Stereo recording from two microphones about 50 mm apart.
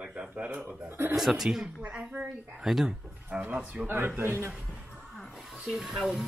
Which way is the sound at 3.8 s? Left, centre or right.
Right.